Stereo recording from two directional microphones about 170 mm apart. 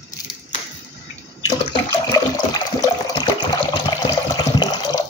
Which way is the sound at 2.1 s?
20° left (ahead or behind).